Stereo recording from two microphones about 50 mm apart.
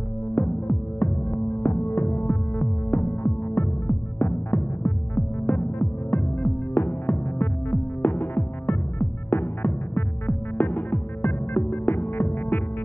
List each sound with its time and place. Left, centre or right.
0.3 s music: left